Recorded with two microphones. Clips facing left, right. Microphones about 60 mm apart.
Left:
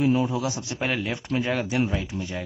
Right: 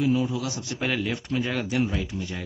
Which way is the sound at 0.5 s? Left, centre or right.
Centre.